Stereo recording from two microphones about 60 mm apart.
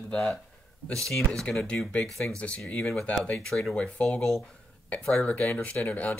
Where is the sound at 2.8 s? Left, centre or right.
Centre.